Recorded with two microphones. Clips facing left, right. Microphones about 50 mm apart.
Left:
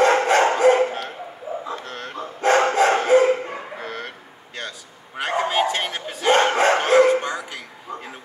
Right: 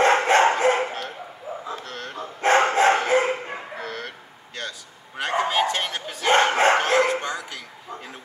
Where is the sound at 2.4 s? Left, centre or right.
Right.